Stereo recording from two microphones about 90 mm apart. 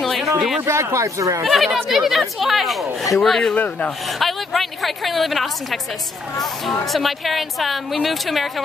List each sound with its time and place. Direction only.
0.0 s a sound: centre (ahead or behind)
0.6 s speech: 25° right (ahead or behind)
1.4 s a woman's voice: centre (ahead or behind)
3.5 s speech: 20° left (ahead or behind)
4.2 s a woman's voice: centre (ahead or behind)